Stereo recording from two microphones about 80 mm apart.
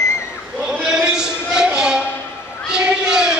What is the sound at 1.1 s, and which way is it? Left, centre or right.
Music, centre.